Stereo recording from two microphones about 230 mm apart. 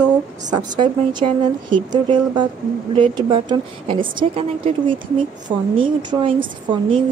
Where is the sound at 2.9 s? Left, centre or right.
Right.